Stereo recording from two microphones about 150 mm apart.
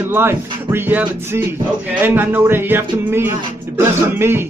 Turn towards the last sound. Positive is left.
turn(degrees=-15)  # may be behind; listen again after turning